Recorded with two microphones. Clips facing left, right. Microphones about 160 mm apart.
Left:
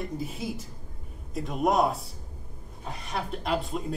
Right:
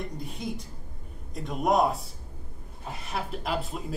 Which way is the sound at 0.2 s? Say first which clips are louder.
Left 2 dB; centre (ahead or behind).